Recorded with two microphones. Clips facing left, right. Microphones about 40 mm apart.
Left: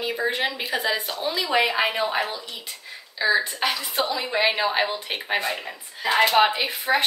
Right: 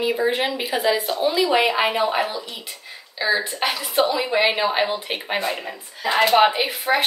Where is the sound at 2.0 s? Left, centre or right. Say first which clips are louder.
Right 3 dB; right.